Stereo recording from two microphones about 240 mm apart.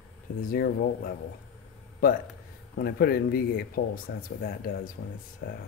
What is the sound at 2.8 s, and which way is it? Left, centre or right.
Speech, left.